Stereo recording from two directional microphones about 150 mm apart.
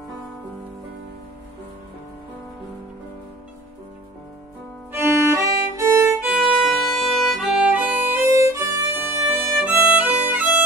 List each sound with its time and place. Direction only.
4.9 s violin: 15° right (ahead or behind)
6.6 s music: centre (ahead or behind)
8.4 s violin: 20° right (ahead or behind)